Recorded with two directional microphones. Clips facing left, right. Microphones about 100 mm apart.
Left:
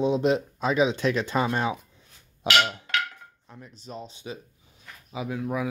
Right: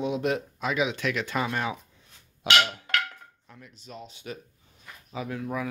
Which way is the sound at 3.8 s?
35° left (ahead or behind).